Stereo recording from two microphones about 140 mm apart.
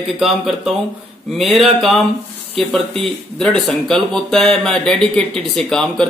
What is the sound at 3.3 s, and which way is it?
Speech, 5° left (ahead or behind).